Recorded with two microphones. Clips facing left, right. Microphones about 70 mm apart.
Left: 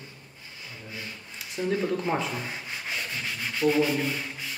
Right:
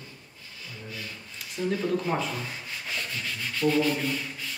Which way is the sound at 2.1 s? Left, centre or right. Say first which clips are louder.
Left 2 dB; left.